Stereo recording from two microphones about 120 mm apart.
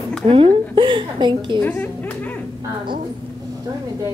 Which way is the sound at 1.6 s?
15° left (ahead or behind).